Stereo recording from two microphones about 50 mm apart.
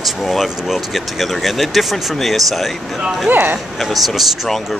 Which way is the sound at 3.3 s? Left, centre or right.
Right.